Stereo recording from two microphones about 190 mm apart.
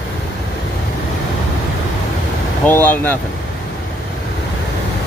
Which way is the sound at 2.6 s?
10° left (ahead or behind).